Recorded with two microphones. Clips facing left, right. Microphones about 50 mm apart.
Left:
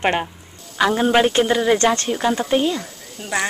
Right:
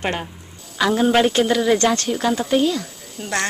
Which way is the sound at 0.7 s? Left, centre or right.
Centre.